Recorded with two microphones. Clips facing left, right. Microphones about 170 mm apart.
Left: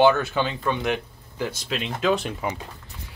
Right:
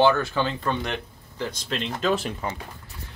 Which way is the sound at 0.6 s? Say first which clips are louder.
Left 3 dB; 5° left (ahead or behind).